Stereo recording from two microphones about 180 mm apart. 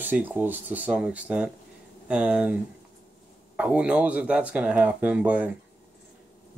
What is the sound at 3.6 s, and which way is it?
Speech, 5° right (ahead or behind).